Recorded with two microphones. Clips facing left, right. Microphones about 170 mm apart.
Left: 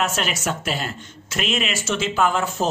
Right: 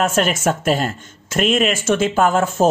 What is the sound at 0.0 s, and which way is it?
Speech, 50° right (ahead or behind).